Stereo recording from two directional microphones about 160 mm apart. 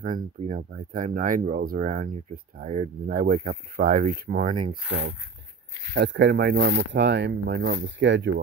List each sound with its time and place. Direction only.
0.0 s speech: 60° right (ahead or behind)
2.6 s speech: 50° right (ahead or behind)
5.9 s speech: 90° right